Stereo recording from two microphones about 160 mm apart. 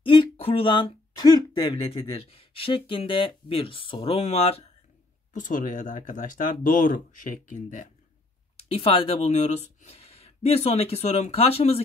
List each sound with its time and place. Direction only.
0.0 s speech: 30° left (ahead or behind)
5.3 s speech: 55° left (ahead or behind)
8.5 s speech: 35° left (ahead or behind)